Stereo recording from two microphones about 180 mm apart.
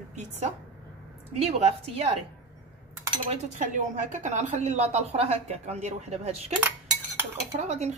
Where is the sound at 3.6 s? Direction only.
45° right (ahead or behind).